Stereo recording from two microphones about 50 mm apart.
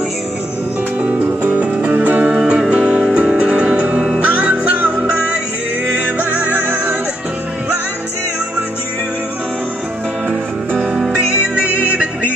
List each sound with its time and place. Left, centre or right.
0.9 s music: right
2.2 s music: centre
5.9 s music: right
10.8 s music: centre
11.1 s music: right